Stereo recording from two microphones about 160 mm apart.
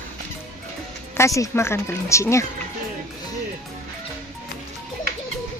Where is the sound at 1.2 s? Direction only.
20° left (ahead or behind).